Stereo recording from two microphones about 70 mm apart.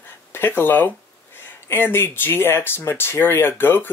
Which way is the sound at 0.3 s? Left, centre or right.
Left.